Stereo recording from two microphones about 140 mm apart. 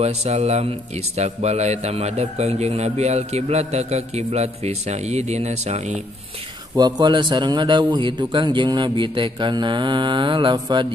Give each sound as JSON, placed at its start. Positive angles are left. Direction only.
{"t": 0.0, "sound": "a man's voice", "side_deg": -50}
{"t": 6.7, "sound": "a man's voice", "side_deg": -30}